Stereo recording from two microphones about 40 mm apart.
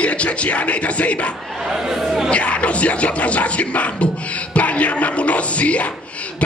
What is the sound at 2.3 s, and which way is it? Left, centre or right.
Music, left.